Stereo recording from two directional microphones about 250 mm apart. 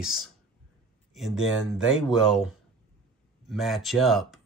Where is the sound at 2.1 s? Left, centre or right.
Centre.